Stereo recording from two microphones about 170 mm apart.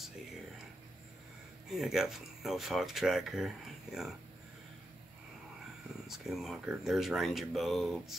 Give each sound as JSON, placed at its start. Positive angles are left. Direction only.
{"t": 1.7, "sound": "speech", "side_deg": 0}
{"t": 6.0, "sound": "speech", "side_deg": 0}